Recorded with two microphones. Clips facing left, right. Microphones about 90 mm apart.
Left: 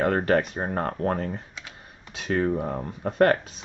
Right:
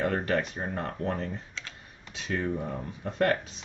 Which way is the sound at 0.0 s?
50° left (ahead or behind).